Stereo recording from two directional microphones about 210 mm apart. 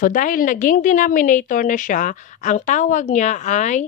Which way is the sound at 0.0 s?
40° left (ahead or behind).